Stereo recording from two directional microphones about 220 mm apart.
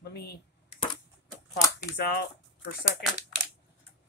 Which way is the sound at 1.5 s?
50° left (ahead or behind).